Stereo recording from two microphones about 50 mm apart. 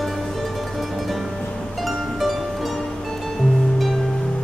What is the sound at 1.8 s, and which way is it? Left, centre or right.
Music, centre.